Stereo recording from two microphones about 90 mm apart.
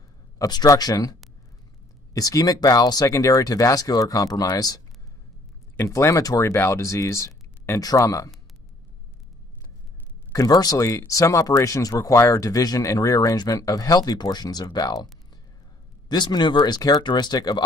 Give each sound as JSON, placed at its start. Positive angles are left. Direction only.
{"t": 0.4, "sound": "speech", "side_deg": 45}
{"t": 2.1, "sound": "speech", "side_deg": 40}
{"t": 5.8, "sound": "speech", "side_deg": 30}
{"t": 10.3, "sound": "speech", "side_deg": 40}
{"t": 16.1, "sound": "speech", "side_deg": 55}